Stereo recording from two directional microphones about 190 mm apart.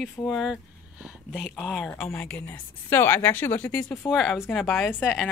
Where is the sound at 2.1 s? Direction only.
15° left (ahead or behind).